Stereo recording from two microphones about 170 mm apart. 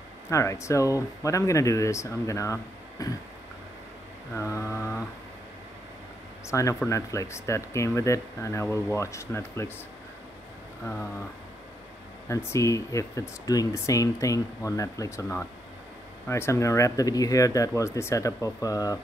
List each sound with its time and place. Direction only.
0.3 s speech: 15° left (ahead or behind)
4.4 s mantra: 15° left (ahead or behind)
6.4 s speech: 15° left (ahead or behind)
12.3 s speech: 15° left (ahead or behind)